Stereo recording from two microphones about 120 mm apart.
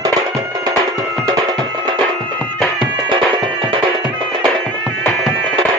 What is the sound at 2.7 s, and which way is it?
Music, 40° right (ahead or behind).